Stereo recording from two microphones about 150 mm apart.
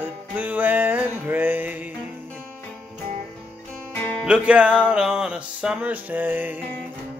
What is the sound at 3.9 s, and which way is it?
Music, 10° left (ahead or behind).